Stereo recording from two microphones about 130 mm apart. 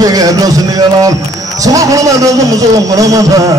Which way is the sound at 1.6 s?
25° right (ahead or behind).